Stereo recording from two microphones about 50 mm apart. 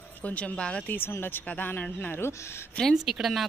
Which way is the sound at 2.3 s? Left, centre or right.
Left.